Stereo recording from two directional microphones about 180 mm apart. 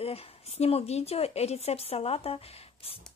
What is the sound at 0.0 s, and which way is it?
Speech, 35° left (ahead or behind).